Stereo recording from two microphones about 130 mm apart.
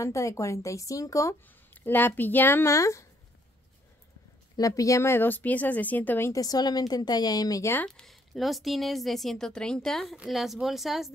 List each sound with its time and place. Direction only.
0.0 s speech: 25° left (ahead or behind)
1.7 s speech: 15° left (ahead or behind)
4.6 s speech: 25° left (ahead or behind)
7.8 s speech: 5° left (ahead or behind)